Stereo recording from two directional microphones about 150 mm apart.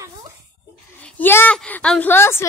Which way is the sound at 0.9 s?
10° left (ahead or behind).